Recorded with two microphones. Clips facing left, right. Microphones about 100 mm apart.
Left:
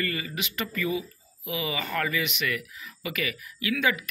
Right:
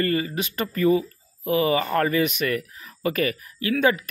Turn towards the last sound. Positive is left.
turn(degrees=-35)  # may be behind; listen again after turning